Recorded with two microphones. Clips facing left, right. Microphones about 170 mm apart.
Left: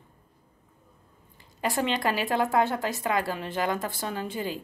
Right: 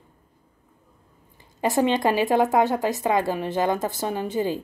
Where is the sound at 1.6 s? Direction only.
20° right (ahead or behind).